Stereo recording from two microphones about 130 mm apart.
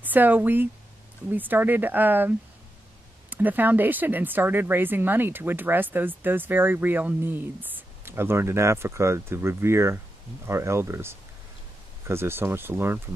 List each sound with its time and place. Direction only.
0.0 s speech: 15° right (ahead or behind)